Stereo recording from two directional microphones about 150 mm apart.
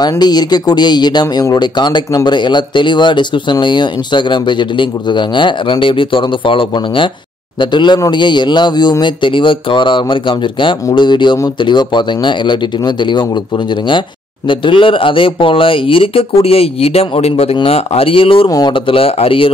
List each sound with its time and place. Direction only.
0.0 s speech: 25° left (ahead or behind)
14.5 s speech: 35° left (ahead or behind)